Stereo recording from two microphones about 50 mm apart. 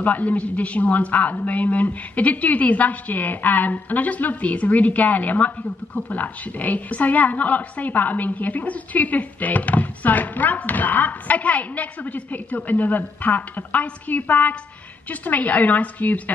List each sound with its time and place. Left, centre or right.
0.0 s a woman's voice: left